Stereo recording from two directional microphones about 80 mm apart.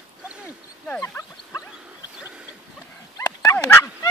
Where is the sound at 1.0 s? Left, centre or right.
Left.